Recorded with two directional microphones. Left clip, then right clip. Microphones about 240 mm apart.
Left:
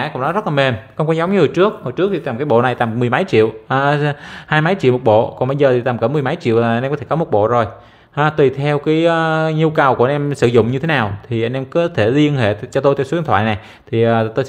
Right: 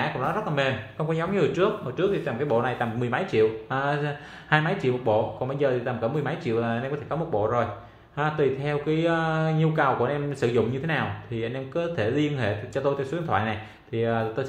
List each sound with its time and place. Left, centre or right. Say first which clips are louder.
0.0 s speech: left 8 dB; left